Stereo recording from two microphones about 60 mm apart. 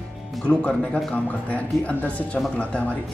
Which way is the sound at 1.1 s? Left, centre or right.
Left.